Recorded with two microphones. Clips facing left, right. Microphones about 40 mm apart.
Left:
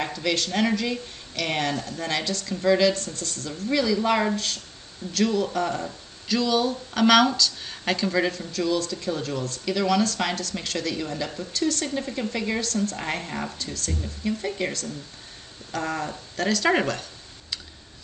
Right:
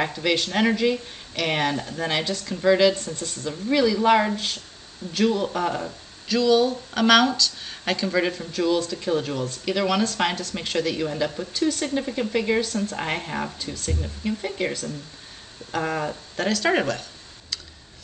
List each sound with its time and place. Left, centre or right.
0.1 s speech: centre
5.9 s speech: centre